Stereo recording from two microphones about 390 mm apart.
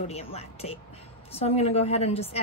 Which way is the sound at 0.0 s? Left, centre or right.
Centre.